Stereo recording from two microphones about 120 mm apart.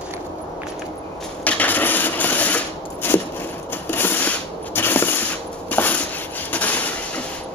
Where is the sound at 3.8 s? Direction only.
15° left (ahead or behind).